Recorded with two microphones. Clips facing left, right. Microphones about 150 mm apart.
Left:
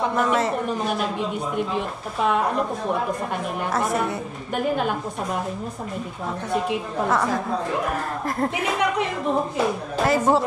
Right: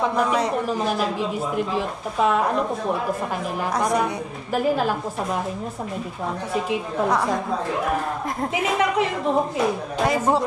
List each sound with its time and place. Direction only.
0.0 s a woman's voice: centre (ahead or behind)
6.5 s a woman's voice: centre (ahead or behind)